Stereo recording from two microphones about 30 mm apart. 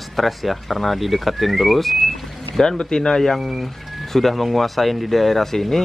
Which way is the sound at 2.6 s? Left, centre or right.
Left.